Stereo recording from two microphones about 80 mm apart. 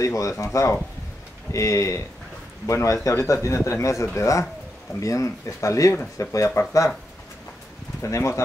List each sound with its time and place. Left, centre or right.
0.0 s speech: left
8.0 s speech: left